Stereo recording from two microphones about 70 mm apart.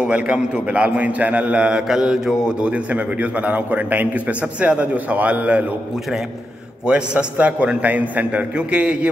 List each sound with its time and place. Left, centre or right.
0.0 s a man's voice: centre
6.9 s a man's voice: centre